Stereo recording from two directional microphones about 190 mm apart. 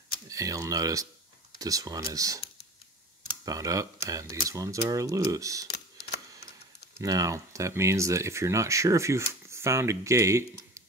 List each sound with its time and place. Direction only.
0.3 s speech: 15° right (ahead or behind)
3.4 s speech: 20° right (ahead or behind)
7.0 s speech: 20° right (ahead or behind)